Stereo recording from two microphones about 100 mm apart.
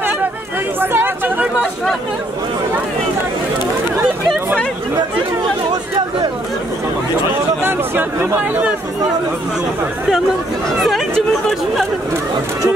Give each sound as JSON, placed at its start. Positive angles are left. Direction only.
{"t": 0.7, "sound": "chatter", "side_deg": -20}
{"t": 7.6, "sound": "speech", "side_deg": -20}
{"t": 11.4, "sound": "speech", "side_deg": 5}